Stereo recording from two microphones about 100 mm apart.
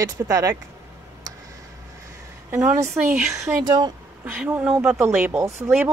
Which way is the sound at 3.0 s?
20° right (ahead or behind).